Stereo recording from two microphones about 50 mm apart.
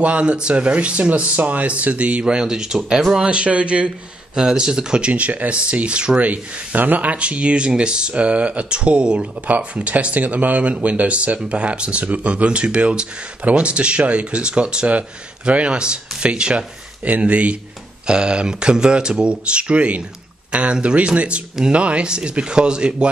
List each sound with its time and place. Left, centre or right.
0.0 s speech: right; by 3.3 s centre
3.3 s speech: right